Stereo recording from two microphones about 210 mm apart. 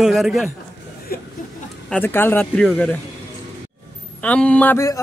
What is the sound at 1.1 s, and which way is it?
Speech, 45° left (ahead or behind).